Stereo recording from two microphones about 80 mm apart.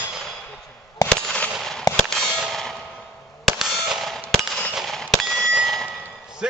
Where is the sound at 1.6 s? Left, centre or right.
Centre.